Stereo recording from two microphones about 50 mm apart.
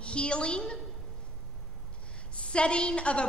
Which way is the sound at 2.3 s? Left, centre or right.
Left.